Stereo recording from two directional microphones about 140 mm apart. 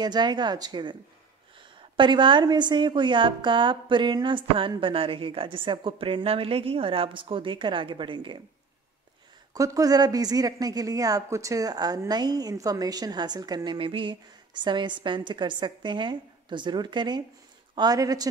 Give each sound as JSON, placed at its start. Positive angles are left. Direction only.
{"t": 0.0, "sound": "a woman's voice", "side_deg": -30}
{"t": 2.0, "sound": "a woman's voice", "side_deg": -35}
{"t": 9.5, "sound": "speech", "side_deg": -25}